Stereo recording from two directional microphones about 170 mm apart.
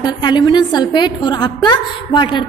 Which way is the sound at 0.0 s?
25° left (ahead or behind).